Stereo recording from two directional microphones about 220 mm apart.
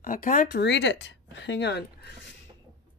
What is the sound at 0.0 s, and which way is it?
Speech, 35° left (ahead or behind).